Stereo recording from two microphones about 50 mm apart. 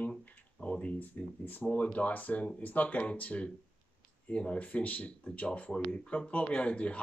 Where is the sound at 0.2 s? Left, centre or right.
Left.